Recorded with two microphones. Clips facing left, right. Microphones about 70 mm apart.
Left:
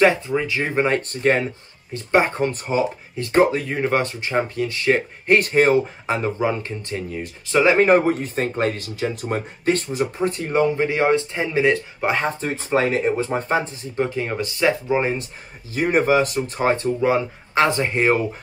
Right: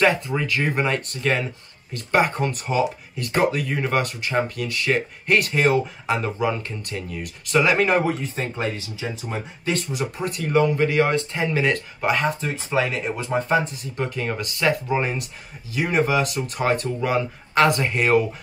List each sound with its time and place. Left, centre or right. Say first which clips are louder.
0.0 s speech: left 3 dB; left
9.9 s speech: left 4 dB; left
15.7 s speech: left 3 dB; left